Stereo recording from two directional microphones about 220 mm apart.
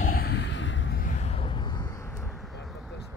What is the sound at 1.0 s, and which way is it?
Vehicle, 35° left (ahead or behind).